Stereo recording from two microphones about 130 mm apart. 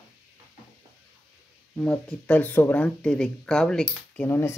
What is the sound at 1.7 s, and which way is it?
Speech, 5° left (ahead or behind).